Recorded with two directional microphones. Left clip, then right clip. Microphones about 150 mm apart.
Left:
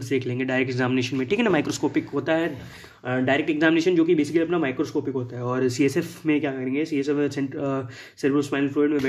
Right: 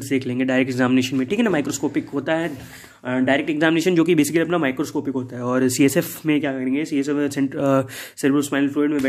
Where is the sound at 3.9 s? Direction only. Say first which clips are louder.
Right 3 dB; 55° right (ahead or behind); by 7.5 s 30° right (ahead or behind).